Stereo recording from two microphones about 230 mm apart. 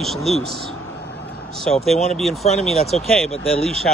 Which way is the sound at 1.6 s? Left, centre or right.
Centre.